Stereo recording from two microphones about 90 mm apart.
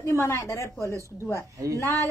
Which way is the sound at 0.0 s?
30° left (ahead or behind).